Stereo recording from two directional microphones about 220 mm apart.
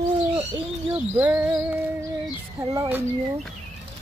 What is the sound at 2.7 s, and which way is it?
Speech, 15° right (ahead or behind).